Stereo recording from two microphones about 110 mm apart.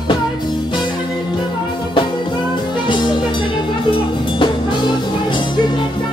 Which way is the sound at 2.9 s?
45° left (ahead or behind).